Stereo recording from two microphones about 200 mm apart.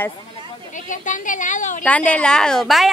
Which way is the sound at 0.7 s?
40° left (ahead or behind).